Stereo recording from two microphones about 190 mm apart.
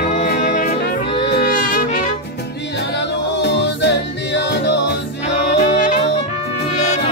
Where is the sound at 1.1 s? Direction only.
60° left (ahead or behind).